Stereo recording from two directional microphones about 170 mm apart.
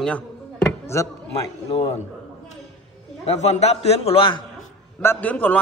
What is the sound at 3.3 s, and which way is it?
A man's voice, 40° left (ahead or behind).